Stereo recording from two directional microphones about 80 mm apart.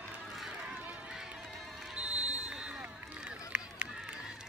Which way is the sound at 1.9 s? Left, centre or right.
Centre.